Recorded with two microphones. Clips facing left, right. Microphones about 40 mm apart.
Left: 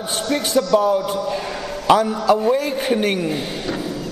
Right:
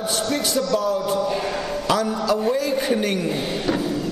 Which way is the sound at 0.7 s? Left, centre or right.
Left.